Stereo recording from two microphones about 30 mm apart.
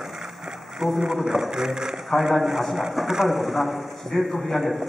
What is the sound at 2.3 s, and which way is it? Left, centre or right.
A man's voice, centre.